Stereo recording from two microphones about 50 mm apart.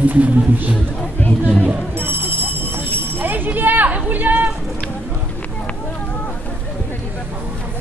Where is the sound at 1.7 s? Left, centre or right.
Right.